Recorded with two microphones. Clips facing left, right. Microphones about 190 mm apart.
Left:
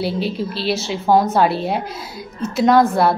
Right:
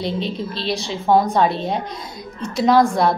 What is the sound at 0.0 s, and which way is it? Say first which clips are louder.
A woman's voice: left 2 dB; 5° left (ahead or behind).